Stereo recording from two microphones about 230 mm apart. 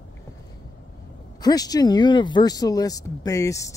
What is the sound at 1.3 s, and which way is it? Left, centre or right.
Speech, centre.